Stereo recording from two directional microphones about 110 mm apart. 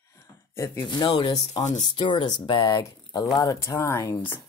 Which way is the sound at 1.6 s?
90° left.